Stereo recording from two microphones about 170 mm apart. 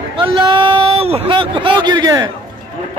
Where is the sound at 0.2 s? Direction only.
30° right (ahead or behind).